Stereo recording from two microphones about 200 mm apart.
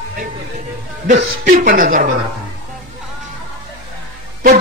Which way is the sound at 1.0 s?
40° right (ahead or behind).